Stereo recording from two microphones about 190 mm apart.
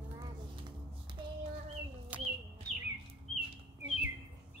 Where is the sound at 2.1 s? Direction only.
10° right (ahead or behind).